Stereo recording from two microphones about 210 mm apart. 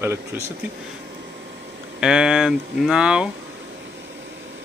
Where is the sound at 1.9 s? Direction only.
5° right (ahead or behind).